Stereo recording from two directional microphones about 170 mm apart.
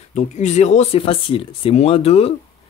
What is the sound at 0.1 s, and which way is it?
Speech, 40° left (ahead or behind).